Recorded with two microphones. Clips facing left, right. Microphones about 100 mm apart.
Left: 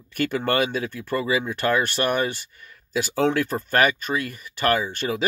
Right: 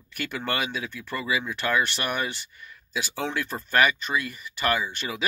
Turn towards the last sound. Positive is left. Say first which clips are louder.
# left 5 dB
turn(degrees=50)  # may be behind; listen again after turning